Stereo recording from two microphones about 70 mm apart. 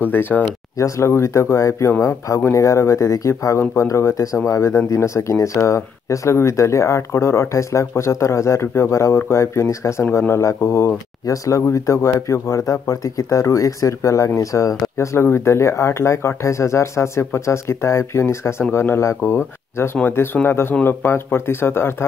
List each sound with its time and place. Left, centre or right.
0.0 s speech: left
0.7 s speech: left
11.2 s speech: left